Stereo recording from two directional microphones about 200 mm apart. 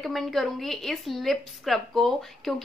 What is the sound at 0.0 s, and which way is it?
A woman's voice, centre (ahead or behind).